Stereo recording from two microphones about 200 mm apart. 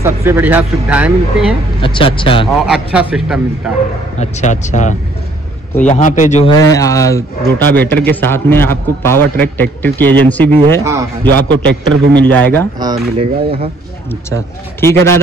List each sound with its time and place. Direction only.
0.0 s speech: 15° right (ahead or behind)
1.8 s speech: 25° left (ahead or behind)
2.4 s a man's voice: 5° right (ahead or behind)
4.2 s a man's voice: 35° left (ahead or behind)
6.5 s a man's voice: 15° left (ahead or behind)
10.8 s speech: 15° right (ahead or behind)
11.5 s a man's voice: 65° right (ahead or behind)
12.3 s a man's voice: 10° left (ahead or behind)
12.7 s speech: 20° right (ahead or behind)
14.3 s a man's voice: 15° left (ahead or behind)